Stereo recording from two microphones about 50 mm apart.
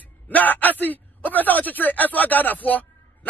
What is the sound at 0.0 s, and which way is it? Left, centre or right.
A man's voice, left.